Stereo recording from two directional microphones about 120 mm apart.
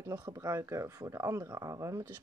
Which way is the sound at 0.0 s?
30° right (ahead or behind).